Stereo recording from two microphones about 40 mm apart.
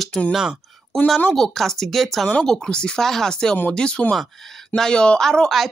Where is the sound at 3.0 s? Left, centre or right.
Centre.